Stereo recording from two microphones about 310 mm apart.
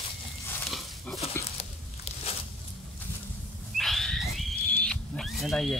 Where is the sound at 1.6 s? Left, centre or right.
Centre.